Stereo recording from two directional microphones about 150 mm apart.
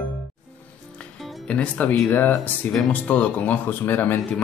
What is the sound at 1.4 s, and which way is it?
Speech, 10° left (ahead or behind).